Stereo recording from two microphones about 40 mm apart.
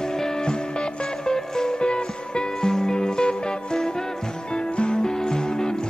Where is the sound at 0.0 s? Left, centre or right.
Centre.